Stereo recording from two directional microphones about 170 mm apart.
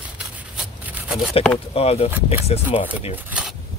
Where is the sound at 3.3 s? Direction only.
5° right (ahead or behind).